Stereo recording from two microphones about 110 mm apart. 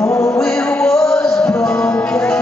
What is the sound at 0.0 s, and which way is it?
Male singing, 30° left (ahead or behind).